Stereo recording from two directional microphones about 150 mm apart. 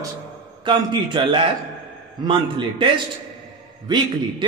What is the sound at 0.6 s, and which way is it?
A man's voice, 35° right (ahead or behind).